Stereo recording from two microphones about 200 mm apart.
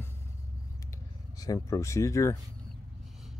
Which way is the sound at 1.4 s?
15° left (ahead or behind).